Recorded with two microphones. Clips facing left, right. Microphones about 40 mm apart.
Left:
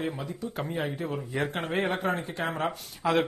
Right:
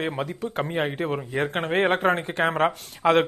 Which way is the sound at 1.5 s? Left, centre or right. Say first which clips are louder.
Right 9 dB; right.